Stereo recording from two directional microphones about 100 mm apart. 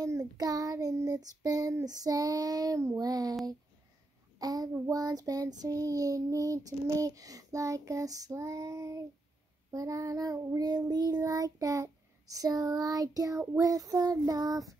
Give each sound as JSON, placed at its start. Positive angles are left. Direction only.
{"t": 0.0, "sound": "child singing", "side_deg": -35}
{"t": 4.4, "sound": "a child's voice", "side_deg": -40}
{"t": 4.8, "sound": "child singing", "side_deg": -35}